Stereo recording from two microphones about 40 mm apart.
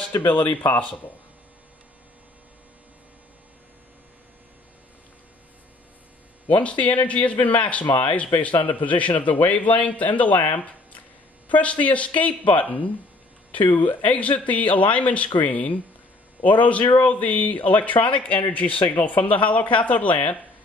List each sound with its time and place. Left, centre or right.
6.6 s speech: left